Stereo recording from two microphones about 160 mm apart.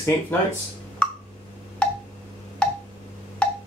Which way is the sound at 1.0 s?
5° left (ahead or behind).